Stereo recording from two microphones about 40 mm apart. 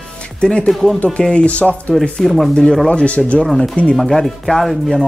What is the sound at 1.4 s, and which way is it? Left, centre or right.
Speech, left.